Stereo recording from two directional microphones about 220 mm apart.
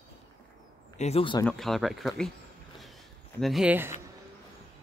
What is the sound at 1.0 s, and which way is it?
Speech, 25° left (ahead or behind).